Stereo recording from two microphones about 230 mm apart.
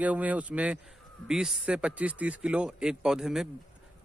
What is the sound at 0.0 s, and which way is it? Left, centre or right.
A man's voice, centre.